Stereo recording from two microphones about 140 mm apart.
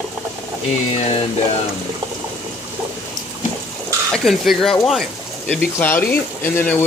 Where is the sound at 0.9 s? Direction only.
50° left (ahead or behind).